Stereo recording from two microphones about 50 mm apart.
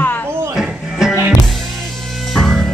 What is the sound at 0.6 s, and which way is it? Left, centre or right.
Music, centre.